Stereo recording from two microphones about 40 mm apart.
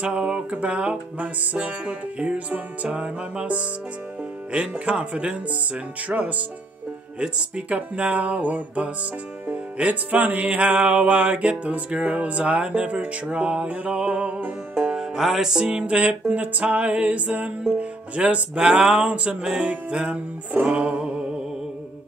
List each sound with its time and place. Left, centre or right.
0.0 s music: right
4.5 s speech: right
6.0 s music: right
14.8 s music: centre
15.1 s music: centre
15.8 s music: right